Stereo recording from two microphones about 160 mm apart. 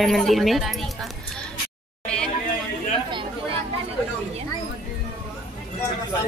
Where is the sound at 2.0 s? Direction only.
5° left (ahead or behind).